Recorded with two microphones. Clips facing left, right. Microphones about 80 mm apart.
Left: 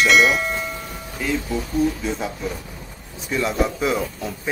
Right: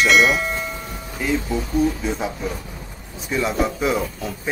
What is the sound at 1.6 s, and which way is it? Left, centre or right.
Speech, centre.